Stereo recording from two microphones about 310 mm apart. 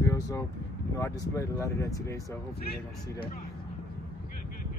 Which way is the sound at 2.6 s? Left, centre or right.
Left.